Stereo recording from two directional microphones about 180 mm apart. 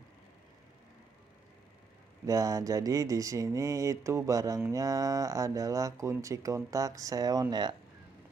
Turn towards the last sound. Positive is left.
turn(degrees=-25)  # may be behind; listen again after turning